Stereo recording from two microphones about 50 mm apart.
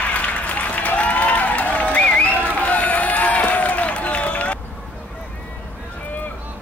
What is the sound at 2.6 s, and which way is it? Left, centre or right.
Run, left.